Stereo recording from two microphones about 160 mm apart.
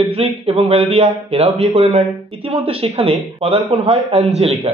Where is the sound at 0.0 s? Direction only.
40° right (ahead or behind).